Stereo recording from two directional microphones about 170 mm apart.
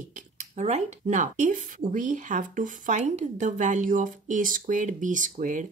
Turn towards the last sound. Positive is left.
turn(degrees=-50)  # may be behind; listen again after turning